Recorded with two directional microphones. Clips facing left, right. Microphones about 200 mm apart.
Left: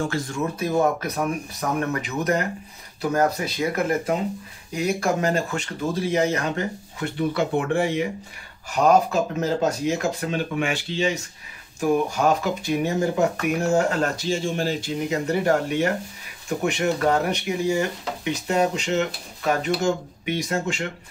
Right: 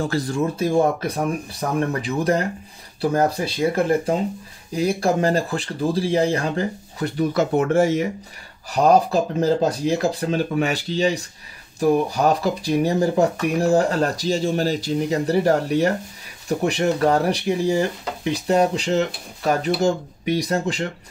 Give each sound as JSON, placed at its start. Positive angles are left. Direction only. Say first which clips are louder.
{"t": 0.0, "sound": "speech", "louder": "right 4 dB", "side_deg": -35}